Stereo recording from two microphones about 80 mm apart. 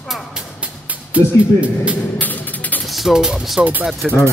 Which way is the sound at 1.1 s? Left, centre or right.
Centre.